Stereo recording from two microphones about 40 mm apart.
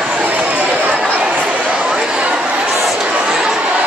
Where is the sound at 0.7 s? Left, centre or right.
Right.